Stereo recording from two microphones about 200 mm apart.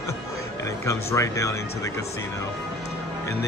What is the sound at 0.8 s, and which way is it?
Speech, 15° left (ahead or behind).